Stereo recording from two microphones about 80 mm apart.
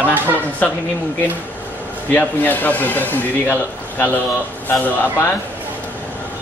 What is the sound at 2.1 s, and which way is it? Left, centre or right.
Speech, left.